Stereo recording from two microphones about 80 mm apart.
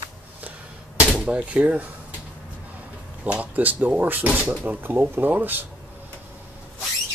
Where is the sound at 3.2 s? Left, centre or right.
Centre.